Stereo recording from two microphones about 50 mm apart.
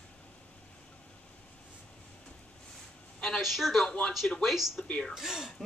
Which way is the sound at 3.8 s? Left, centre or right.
Centre.